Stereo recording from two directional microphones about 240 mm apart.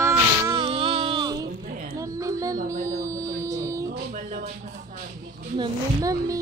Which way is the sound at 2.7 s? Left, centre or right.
Centre.